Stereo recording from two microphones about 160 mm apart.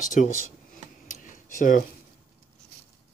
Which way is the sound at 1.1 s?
50° left (ahead or behind).